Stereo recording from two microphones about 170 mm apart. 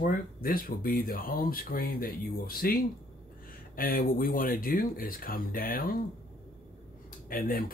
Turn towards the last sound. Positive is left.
turn(degrees=55)  # may be behind; listen again after turning